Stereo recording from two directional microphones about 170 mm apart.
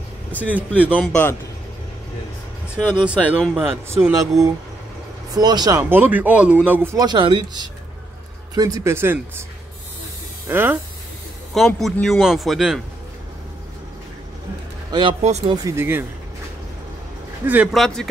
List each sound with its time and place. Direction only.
0.4 s speech: 10° right (ahead or behind)
1.0 s speech: 10° left (ahead or behind)
2.8 s speech: 5° left (ahead or behind)
3.3 s speech: 10° right (ahead or behind)
4.1 s speech: 20° right (ahead or behind)
10.5 s speech: 10° right (ahead or behind)
11.5 s speech: centre (ahead or behind)
14.9 s speech: 30° right (ahead or behind)
15.2 s speech: 40° right (ahead or behind)
15.5 s speech: 20° right (ahead or behind)
17.4 s speech: 10° right (ahead or behind)
17.7 s speech: 5° left (ahead or behind)